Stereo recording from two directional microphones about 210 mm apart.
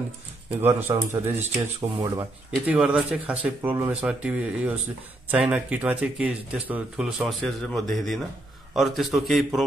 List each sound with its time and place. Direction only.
0.5 s speech: 10° right (ahead or behind)
2.6 s speech: 5° right (ahead or behind)